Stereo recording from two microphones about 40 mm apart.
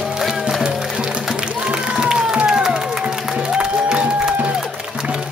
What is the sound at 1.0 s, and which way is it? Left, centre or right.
Music, right.